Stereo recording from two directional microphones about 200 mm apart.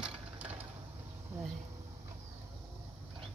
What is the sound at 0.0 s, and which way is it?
Engine, 10° right (ahead or behind).